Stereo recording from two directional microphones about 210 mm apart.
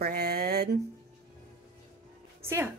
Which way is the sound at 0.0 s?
50° right (ahead or behind).